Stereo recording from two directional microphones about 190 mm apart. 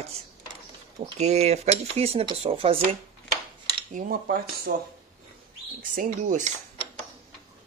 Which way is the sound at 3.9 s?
50° right (ahead or behind).